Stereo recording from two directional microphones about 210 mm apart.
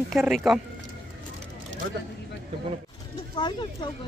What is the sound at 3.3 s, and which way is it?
Speech, 20° left (ahead or behind).